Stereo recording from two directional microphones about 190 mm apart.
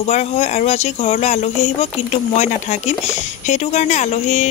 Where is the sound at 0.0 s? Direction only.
35° left (ahead or behind).